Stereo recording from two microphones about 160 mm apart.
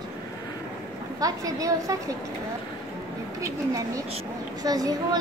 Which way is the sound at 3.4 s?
20° right (ahead or behind).